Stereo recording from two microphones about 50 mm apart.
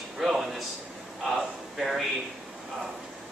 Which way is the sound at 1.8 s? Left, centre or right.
Centre.